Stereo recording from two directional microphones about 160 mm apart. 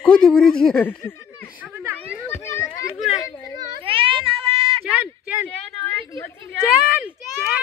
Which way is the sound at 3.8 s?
35° right (ahead or behind).